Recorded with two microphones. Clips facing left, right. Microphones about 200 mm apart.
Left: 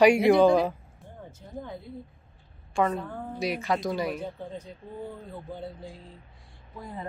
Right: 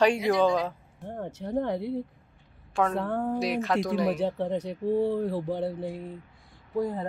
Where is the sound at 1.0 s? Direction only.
70° right (ahead or behind).